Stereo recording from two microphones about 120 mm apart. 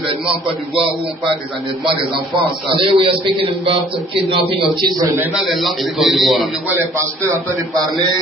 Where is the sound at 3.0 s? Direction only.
50° right (ahead or behind).